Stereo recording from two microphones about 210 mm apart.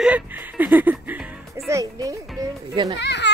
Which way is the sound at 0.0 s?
5° right (ahead or behind).